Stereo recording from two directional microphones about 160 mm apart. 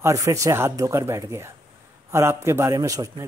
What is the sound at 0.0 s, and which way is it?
A man's voice, 20° right (ahead or behind).